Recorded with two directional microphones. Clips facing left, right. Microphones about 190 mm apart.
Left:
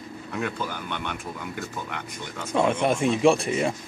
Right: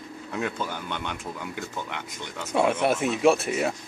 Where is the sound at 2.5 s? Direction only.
5° right (ahead or behind).